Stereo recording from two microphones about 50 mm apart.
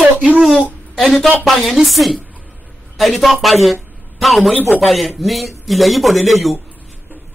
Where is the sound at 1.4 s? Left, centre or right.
Centre.